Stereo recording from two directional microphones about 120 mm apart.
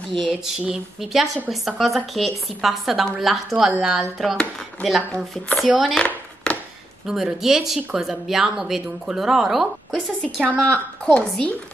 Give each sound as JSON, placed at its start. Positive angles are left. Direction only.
{"t": 0.1, "sound": "speech", "side_deg": 5}
{"t": 5.7, "sound": "chopping", "side_deg": 0}
{"t": 7.1, "sound": "speech", "side_deg": -5}
{"t": 11.1, "sound": "a woman's voice", "side_deg": 10}